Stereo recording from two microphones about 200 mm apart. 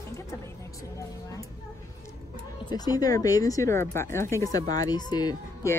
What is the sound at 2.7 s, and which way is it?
Speech, 20° left (ahead or behind).